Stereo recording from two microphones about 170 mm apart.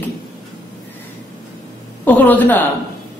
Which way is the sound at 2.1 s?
10° left (ahead or behind).